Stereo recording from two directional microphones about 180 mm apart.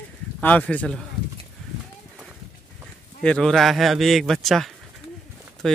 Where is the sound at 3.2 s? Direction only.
5° left (ahead or behind).